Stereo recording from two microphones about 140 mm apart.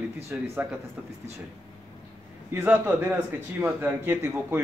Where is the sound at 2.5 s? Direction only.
15° right (ahead or behind).